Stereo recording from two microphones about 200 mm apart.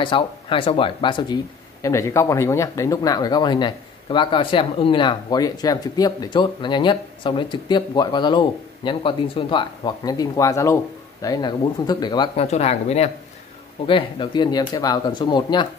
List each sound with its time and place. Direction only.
0.0 s speech: 25° left (ahead or behind)